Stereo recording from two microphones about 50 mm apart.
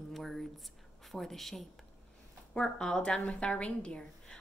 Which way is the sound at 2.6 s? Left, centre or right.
Centre.